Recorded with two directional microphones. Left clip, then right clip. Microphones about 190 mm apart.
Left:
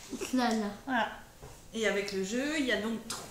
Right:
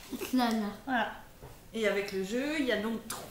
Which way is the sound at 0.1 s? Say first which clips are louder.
Even; 20° right (ahead or behind).